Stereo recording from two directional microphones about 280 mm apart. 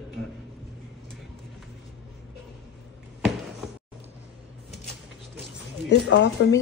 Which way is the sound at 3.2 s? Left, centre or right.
Centre.